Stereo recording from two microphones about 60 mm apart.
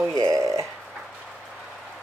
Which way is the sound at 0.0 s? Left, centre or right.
Right.